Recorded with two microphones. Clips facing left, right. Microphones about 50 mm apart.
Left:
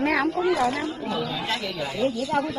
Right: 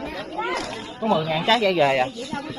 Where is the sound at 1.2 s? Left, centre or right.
Right.